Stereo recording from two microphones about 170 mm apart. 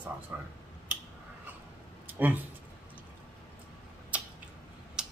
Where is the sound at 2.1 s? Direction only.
10° right (ahead or behind).